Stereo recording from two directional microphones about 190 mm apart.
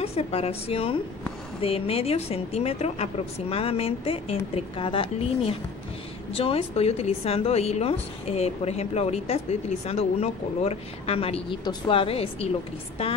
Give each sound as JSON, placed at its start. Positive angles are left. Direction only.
{"t": 0.0, "sound": "a woman's voice", "side_deg": 30}